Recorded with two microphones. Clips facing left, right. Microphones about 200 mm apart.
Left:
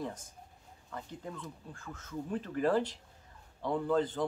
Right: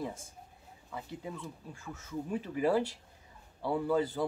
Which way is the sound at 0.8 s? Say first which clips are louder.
Right 2 dB; 10° right (ahead or behind).